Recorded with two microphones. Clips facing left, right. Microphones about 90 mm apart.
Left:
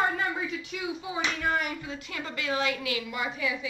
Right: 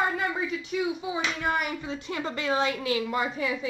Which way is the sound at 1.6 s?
30° right (ahead or behind).